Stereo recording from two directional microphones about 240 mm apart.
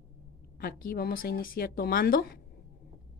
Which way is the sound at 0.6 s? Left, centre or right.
Left.